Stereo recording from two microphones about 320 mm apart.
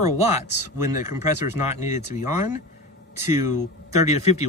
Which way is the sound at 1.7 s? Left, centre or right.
Left.